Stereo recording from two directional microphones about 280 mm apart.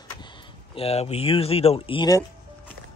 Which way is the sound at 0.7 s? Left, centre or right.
Left.